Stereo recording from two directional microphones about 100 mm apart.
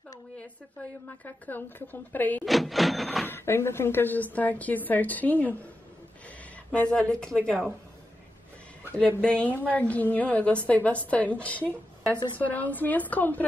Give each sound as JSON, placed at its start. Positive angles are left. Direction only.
{"t": 1.0, "sound": "a woman's voice", "side_deg": 20}
{"t": 2.4, "sound": "printer", "side_deg": 0}
{"t": 3.3, "sound": "a woman's voice", "side_deg": 25}
{"t": 6.7, "sound": "a woman's voice", "side_deg": 10}
{"t": 8.9, "sound": "a woman's voice", "side_deg": 10}